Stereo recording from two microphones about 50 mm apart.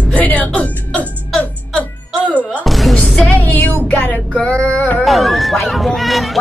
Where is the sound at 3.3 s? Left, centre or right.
Left.